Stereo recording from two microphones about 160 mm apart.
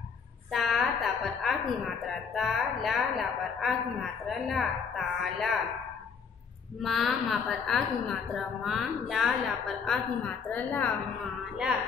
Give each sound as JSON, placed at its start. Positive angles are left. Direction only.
{"t": 0.5, "sound": "a sound", "side_deg": 0}
{"t": 2.0, "sound": "a woman's voice", "side_deg": 0}
{"t": 6.8, "sound": "a woman's voice", "side_deg": 0}